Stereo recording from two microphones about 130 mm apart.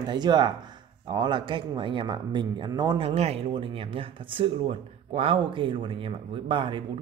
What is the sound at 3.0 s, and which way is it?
Speech, 55° right (ahead or behind).